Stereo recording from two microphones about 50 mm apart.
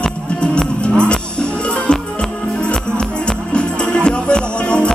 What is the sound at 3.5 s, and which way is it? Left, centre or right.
Music, centre.